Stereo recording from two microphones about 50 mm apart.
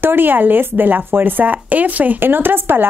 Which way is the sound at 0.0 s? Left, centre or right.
Right.